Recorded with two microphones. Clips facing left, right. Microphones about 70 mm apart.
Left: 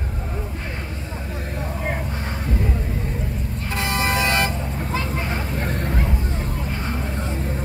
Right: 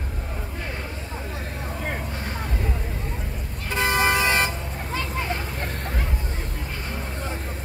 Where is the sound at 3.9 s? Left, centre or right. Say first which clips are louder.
Right 1 dB; right.